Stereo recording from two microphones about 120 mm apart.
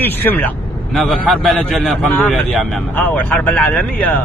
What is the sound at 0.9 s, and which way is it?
A man's voice, centre (ahead or behind).